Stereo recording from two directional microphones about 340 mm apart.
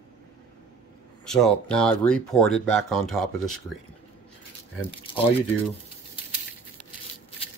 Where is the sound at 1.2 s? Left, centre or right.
Centre.